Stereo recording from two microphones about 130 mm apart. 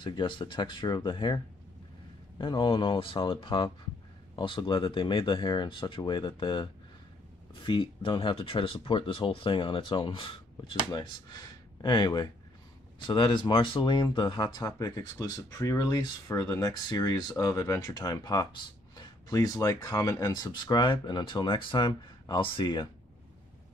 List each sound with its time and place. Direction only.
0.0 s speech: 40° left (ahead or behind)